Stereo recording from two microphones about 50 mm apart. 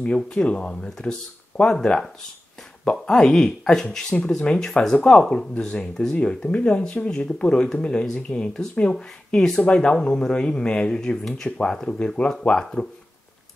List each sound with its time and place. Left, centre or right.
0.0 s speech: left